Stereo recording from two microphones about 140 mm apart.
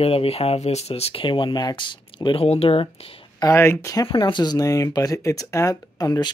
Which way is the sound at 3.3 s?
20° left (ahead or behind).